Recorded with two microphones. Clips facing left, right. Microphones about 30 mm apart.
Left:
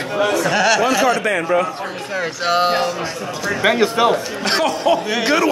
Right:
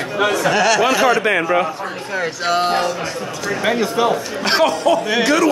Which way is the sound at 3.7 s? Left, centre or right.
Left.